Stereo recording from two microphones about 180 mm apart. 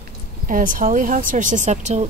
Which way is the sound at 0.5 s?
50° right (ahead or behind).